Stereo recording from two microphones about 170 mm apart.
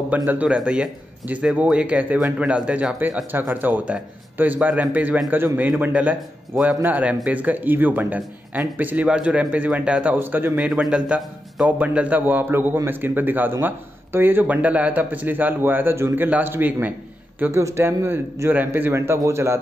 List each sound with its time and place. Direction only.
0.1 s a man's voice: 10° right (ahead or behind)